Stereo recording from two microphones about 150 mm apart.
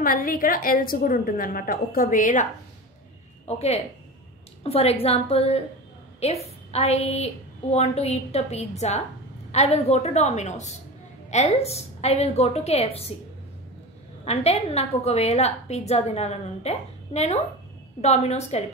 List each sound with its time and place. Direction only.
0.0 s a woman's voice: 70° left (ahead or behind)
3.4 s a woman's voice: 45° left (ahead or behind)
14.2 s a woman's voice: 45° left (ahead or behind)